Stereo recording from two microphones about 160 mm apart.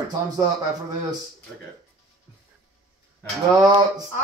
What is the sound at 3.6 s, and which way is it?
Speech, 25° right (ahead or behind).